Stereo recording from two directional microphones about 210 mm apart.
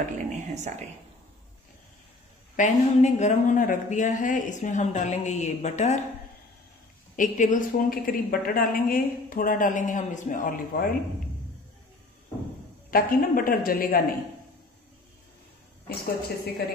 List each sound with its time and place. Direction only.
0.6 s speech: 35° right (ahead or behind)
2.5 s a woman's voice: 35° left (ahead or behind)
7.2 s a woman's voice: 40° left (ahead or behind)
12.9 s speech: 45° left (ahead or behind)
15.9 s speech: 50° left (ahead or behind)